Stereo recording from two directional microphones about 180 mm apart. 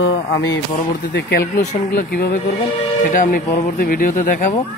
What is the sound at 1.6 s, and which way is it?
Speech, 55° left (ahead or behind).